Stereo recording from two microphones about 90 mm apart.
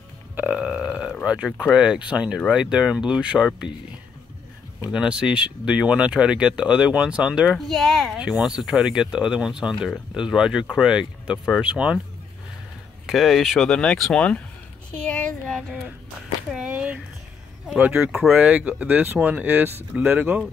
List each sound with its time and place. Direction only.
0.4 s burping: 10° right (ahead or behind)
1.2 s speech: 10° right (ahead or behind)
4.9 s speech: 10° right (ahead or behind)
7.5 s speech: 5° left (ahead or behind); by 12.0 s 15° right (ahead or behind)
13.0 s speech: 5° right (ahead or behind)
13.7 s speech: 10° left (ahead or behind)
15.0 s a sound: 15° left (ahead or behind)
15.7 s speech: 10° right (ahead or behind)
16.5 s a sound: 10° right (ahead or behind)
17.7 s speech: 15° right (ahead or behind)